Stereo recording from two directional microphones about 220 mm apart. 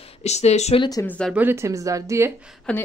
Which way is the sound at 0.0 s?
30° left (ahead or behind).